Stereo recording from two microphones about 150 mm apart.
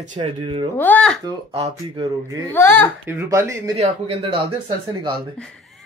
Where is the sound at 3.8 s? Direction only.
40° right (ahead or behind).